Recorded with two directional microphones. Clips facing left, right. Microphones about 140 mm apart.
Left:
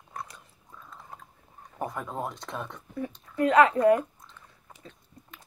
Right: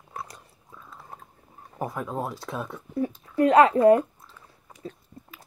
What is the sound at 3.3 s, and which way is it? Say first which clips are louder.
Speech: right 3 dB; 35° right (ahead or behind).